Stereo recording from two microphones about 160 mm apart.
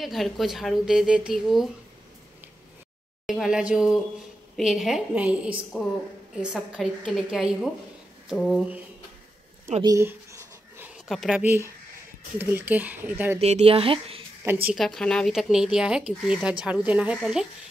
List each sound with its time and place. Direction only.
0.0 s speech: centre (ahead or behind)
3.3 s speech: 5° right (ahead or behind)
9.8 s a sound: 15° right (ahead or behind)
11.1 s speech: centre (ahead or behind)
13.4 s speech: 40° right (ahead or behind)
14.4 s a woman's voice: 10° right (ahead or behind)
14.8 s speech: 5° left (ahead or behind)